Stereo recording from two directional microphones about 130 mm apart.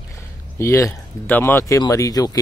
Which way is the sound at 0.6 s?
20° left (ahead or behind).